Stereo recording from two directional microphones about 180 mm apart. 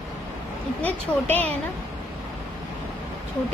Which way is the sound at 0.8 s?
10° left (ahead or behind).